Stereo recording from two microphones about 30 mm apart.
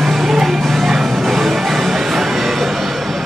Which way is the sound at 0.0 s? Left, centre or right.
Centre.